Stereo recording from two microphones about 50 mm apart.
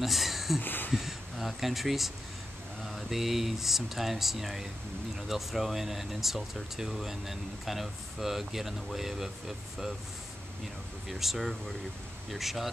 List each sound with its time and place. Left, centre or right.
0.0 s speech: centre
0.6 s a sound: left
0.9 s speech: centre
11.1 s speech: centre